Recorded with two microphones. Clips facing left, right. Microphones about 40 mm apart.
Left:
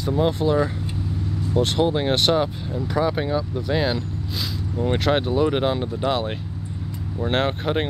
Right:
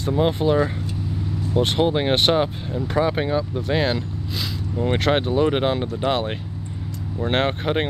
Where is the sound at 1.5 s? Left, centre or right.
Right.